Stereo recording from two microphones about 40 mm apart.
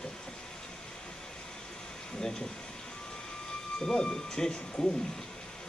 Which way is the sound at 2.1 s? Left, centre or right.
Centre.